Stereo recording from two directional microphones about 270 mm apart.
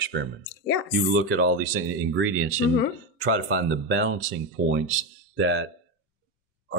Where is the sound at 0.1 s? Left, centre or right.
Right.